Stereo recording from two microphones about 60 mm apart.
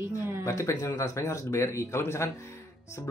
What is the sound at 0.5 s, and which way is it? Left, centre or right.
Speech, left.